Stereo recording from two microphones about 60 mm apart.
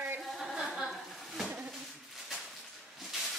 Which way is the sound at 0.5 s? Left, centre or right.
Centre.